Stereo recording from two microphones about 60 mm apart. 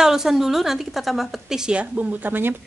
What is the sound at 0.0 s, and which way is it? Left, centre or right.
A woman's voice, centre.